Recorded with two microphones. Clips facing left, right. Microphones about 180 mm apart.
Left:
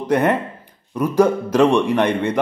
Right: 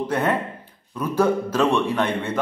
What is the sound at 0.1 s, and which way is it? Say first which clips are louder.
A man's voice: left 9 dB; 15° left (ahead or behind).